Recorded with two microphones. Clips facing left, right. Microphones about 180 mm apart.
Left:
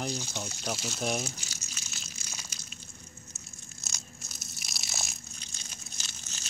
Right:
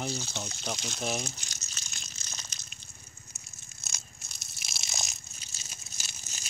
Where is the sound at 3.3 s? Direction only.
15° right (ahead or behind).